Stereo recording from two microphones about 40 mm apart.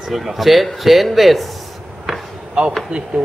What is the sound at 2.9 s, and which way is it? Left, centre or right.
Speech, right.